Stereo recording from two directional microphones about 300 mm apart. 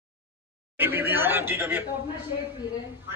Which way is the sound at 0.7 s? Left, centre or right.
Centre.